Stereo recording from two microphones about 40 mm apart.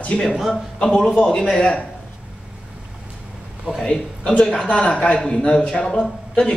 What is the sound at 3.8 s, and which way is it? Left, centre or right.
A man's voice, left.